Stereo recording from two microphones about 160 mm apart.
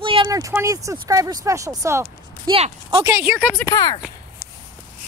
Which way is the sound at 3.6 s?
20° left (ahead or behind).